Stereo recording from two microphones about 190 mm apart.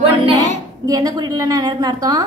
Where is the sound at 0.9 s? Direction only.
20° right (ahead or behind).